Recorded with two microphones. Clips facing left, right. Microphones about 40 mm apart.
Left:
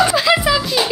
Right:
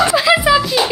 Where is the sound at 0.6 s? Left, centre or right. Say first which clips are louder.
Right 2 dB; centre.